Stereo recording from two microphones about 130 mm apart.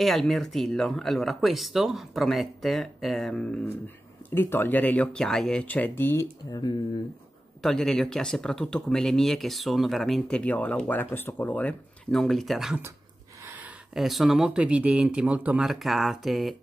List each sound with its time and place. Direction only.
0.0 s speech: centre (ahead or behind)
4.3 s speech: 15° left (ahead or behind)
6.5 s speech: 30° left (ahead or behind)
7.6 s speech: 5° left (ahead or behind)
13.4 s a sound: 15° right (ahead or behind)
13.9 s speech: centre (ahead or behind)